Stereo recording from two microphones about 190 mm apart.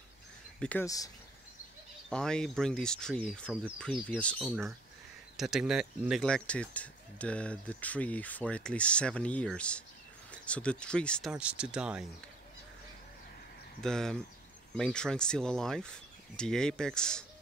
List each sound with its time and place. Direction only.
0.6 s speech: 5° left (ahead or behind)
0.8 s speech: 20° left (ahead or behind)
2.0 s speech: 5° left (ahead or behind)
11.3 s speech: 5° right (ahead or behind)
13.7 s speech: 5° left (ahead or behind)